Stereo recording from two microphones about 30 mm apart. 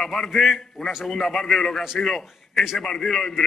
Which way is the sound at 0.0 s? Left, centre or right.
Centre.